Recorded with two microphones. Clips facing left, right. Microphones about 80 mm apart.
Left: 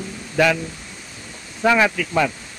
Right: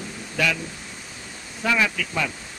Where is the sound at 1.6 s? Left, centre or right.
Left.